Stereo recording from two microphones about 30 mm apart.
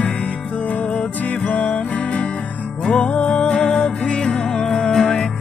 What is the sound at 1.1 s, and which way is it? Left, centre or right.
Music, left.